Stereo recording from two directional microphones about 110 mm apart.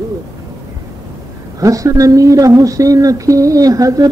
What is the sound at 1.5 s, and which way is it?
Speech, 30° right (ahead or behind).